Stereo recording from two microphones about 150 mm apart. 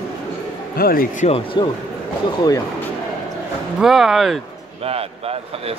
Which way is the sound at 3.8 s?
Centre (ahead or behind).